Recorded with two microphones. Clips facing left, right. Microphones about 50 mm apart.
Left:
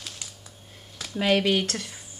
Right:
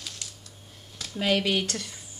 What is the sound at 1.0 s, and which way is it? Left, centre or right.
Speech, centre.